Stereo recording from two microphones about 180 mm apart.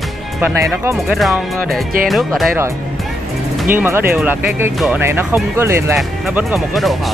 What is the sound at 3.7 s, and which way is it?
Speech, 10° right (ahead or behind).